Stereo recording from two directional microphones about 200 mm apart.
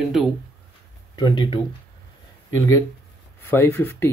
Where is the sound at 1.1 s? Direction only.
20° left (ahead or behind).